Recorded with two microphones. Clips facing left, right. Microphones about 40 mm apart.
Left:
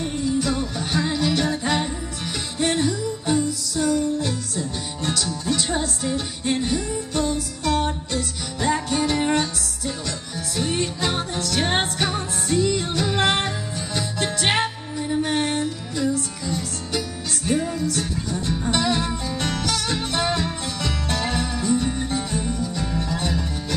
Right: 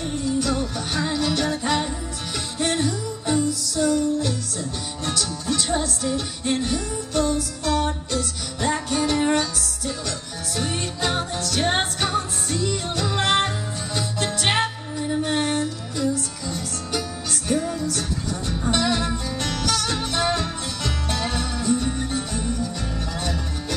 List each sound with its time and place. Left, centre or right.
0.0 s music: centre
10.5 s music: centre
16.0 s music: left